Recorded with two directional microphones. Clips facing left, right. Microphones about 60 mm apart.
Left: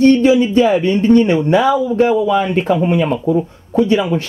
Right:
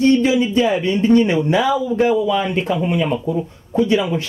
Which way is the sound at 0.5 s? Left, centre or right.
Left.